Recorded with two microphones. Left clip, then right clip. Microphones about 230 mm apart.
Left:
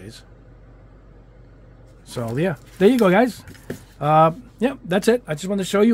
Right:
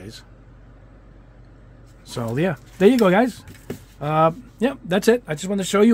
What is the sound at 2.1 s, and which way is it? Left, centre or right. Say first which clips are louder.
Speech: even; centre.